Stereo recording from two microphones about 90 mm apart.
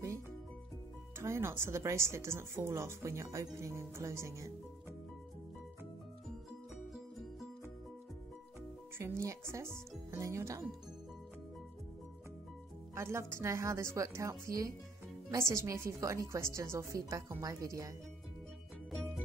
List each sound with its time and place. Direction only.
1.1 s speech: 30° right (ahead or behind)
6.9 s music: centre (ahead or behind)
8.9 s speech: 30° right (ahead or behind)
12.9 s speech: 30° right (ahead or behind)